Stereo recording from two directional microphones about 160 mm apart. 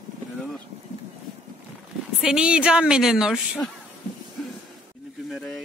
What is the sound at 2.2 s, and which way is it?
A woman's voice, 5° right (ahead or behind).